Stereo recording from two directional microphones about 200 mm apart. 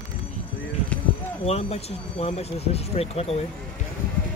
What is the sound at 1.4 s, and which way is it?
Speech, 30° left (ahead or behind).